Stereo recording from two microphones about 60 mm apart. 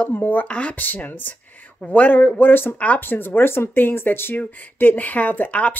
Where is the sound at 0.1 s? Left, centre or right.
Left.